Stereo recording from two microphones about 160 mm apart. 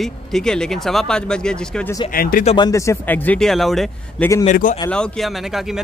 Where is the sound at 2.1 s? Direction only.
65° left (ahead or behind).